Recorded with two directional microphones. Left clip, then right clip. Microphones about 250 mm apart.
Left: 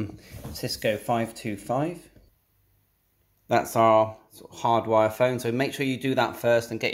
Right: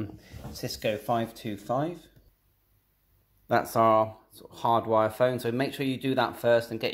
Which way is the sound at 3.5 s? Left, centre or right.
Centre.